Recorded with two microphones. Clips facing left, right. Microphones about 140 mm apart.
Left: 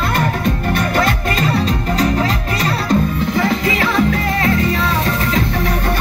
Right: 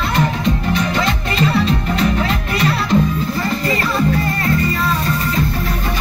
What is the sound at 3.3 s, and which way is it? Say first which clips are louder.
Music: left 3 dB; 90° left.